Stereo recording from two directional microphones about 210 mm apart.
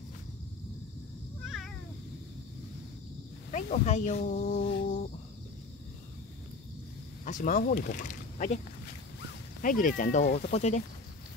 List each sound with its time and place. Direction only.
3.5 s speech: 35° left (ahead or behind)
7.2 s speech: 40° left (ahead or behind)
9.6 s speech: 40° left (ahead or behind)